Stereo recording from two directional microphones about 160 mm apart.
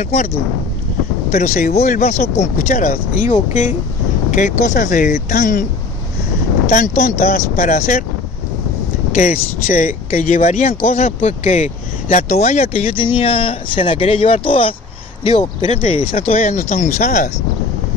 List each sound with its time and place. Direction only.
0.0 s speech: 45° left (ahead or behind)
1.3 s speech: 55° left (ahead or behind)
1.7 s speech: 45° left (ahead or behind); by 5.7 s 65° left (ahead or behind)
6.7 s speech: 50° left (ahead or behind)
9.7 s speech: 55° left (ahead or behind)